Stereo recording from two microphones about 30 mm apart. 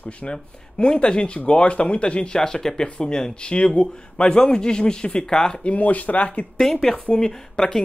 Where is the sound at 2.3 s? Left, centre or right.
Centre.